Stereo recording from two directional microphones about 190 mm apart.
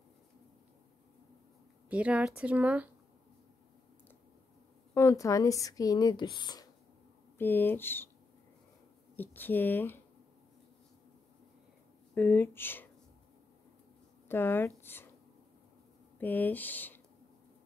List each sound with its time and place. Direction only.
1.9 s speech: 5° right (ahead or behind)
4.9 s speech: 15° left (ahead or behind)
7.3 s speech: 10° left (ahead or behind)
9.1 s speech: 10° left (ahead or behind)
12.1 s speech: 10° left (ahead or behind)
14.3 s speech: 10° left (ahead or behind)
16.2 s speech: 10° left (ahead or behind)